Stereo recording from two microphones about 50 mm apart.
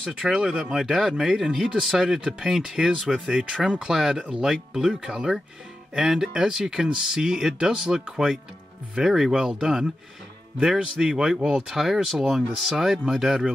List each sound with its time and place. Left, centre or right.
0.1 s speech: centre